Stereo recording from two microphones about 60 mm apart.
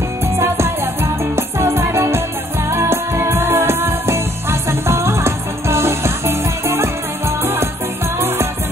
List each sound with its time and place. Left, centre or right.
1.3 s music: right